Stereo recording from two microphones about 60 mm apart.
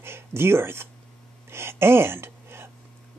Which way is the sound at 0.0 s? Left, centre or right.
Right.